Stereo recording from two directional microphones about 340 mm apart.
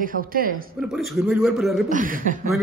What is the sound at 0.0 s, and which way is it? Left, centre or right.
Speech, right.